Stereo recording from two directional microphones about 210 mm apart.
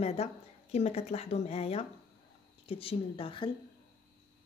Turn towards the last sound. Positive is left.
turn(degrees=25)  # may be behind; listen again after turning